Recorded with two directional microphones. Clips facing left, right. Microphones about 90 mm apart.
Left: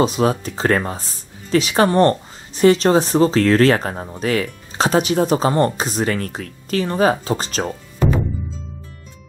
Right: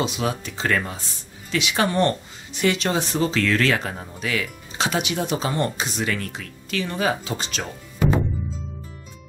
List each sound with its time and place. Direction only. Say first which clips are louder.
0.0 s speech: left 8 dB; 40° left (ahead or behind)